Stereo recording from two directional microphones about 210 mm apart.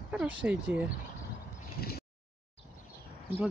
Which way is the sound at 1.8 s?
45° left (ahead or behind).